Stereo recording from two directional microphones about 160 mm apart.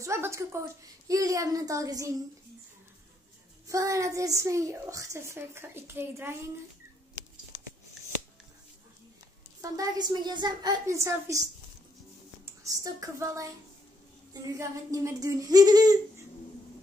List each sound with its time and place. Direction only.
0.0 s a woman's voice: 20° right (ahead or behind)
3.6 s a woman's voice: 20° right (ahead or behind)
9.6 s a woman's voice: 25° right (ahead or behind)
12.4 s a woman's voice: 20° right (ahead or behind)